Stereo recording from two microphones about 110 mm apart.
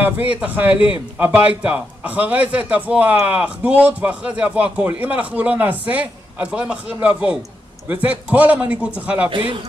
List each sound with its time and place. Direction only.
0.0 s a man's voice: 15° right (ahead or behind)
0.7 s a man's voice: 55° left (ahead or behind)
1.1 s a man's voice: 10° right (ahead or behind)
9.3 s a man's voice: 50° right (ahead or behind)